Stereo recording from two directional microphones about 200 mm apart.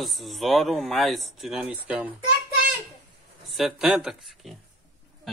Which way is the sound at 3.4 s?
Centre (ahead or behind).